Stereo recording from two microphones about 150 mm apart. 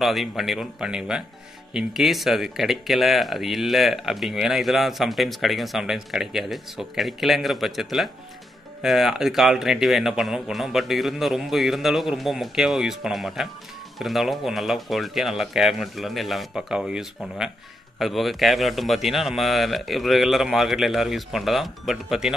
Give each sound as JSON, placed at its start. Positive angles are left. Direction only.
{"t": 0.0, "sound": "speech", "side_deg": 0}